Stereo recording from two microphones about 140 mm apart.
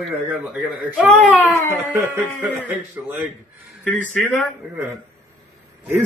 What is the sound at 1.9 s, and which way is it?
Speech, 15° right (ahead or behind).